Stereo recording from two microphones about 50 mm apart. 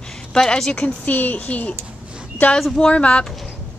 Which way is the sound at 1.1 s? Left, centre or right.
Left.